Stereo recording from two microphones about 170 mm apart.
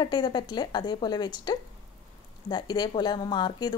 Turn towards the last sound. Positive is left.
turn(degrees=25)  # may be behind; listen again after turning